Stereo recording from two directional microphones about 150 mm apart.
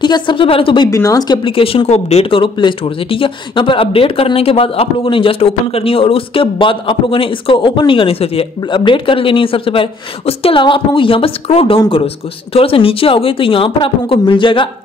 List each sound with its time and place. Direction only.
0.0 s speech: 30° left (ahead or behind)
0.8 s speech: 20° left (ahead or behind)